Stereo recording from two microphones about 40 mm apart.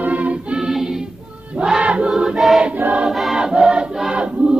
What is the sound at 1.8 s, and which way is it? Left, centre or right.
Choir, right.